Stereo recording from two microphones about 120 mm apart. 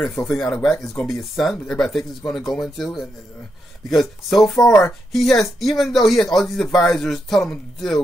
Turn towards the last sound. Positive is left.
turn(degrees=5)  # may be behind; listen again after turning